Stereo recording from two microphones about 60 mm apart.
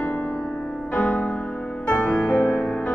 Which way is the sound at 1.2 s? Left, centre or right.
Centre.